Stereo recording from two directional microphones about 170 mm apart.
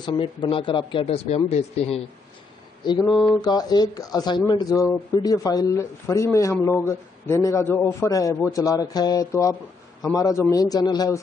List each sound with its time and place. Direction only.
0.0 s speech: 30° left (ahead or behind)
2.8 s speech: 25° left (ahead or behind)